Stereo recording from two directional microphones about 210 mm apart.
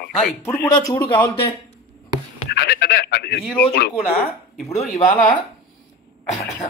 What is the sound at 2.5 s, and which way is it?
Speech, 50° left (ahead or behind).